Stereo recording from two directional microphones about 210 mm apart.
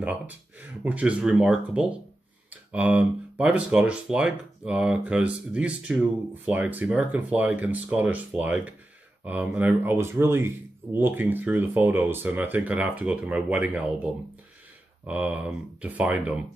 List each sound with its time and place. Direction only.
0.0 s speech: 5° right (ahead or behind)
15.0 s speech: 5° right (ahead or behind)